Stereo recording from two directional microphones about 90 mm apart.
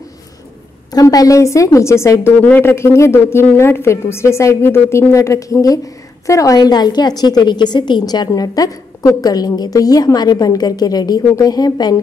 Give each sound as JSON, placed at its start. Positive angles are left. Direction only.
{"t": 0.9, "sound": "a woman's voice", "side_deg": 40}
{"t": 2.2, "sound": "a woman's voice", "side_deg": 25}